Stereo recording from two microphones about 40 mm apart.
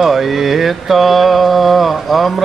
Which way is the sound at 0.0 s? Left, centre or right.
Centre.